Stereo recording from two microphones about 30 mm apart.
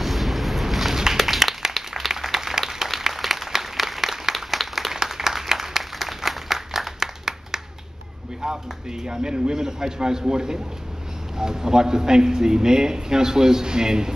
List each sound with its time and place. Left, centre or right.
0.0 s a sound: centre
1.7 s applause: centre
2.2 s a sound: centre
3.0 s applause: centre
4.6 s applause: centre
4.9 s applause: centre
7.0 s clapping: centre
8.4 s a sound: centre
9.0 s a man's voice: right